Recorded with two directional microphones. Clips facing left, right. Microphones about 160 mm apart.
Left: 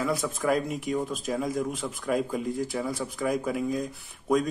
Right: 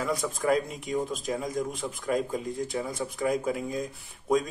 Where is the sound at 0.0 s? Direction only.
Centre (ahead or behind).